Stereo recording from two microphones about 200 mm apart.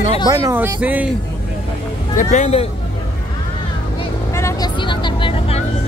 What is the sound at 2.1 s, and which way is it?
Speech, 35° left (ahead or behind).